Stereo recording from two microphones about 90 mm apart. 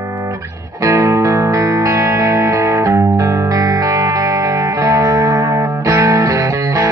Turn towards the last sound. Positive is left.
turn(degrees=-35)  # may be behind; listen again after turning